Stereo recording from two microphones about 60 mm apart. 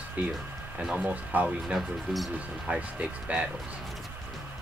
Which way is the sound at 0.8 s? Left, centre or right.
Centre.